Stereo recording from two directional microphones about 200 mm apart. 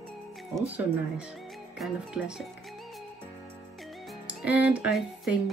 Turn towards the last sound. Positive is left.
turn(degrees=-5)  # may be behind; listen again after turning